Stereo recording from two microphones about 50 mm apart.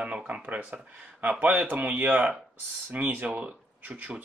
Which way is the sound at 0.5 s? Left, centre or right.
Right.